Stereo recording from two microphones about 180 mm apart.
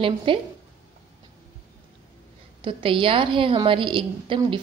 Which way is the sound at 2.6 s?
30° right (ahead or behind).